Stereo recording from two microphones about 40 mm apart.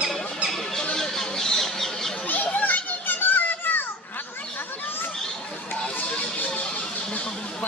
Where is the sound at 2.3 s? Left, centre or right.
Left.